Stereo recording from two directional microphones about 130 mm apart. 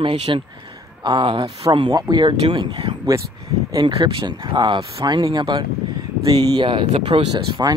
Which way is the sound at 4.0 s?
40° right (ahead or behind).